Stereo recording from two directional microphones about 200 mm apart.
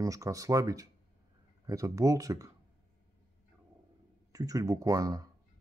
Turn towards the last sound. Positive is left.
turn(degrees=-15)  # may be behind; listen again after turning